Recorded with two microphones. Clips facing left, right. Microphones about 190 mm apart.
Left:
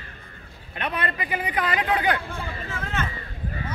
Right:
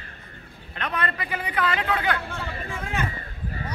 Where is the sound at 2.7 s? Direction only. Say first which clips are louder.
Right 1 dB; 10° right (ahead or behind).